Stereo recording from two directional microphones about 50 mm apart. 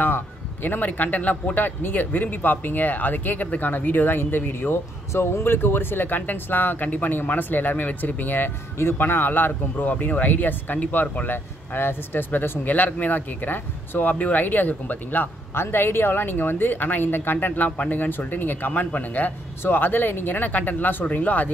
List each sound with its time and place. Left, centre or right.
0.0 s speech: left
8.7 s speech: left
15.6 s speech: left
18.7 s speech: left